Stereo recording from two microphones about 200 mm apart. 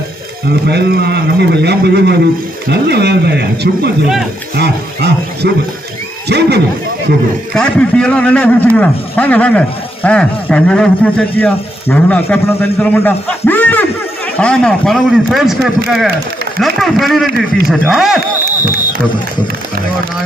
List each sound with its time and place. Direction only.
0.5 s a man's voice: 55° right (ahead or behind)
7.5 s speech: 5° left (ahead or behind)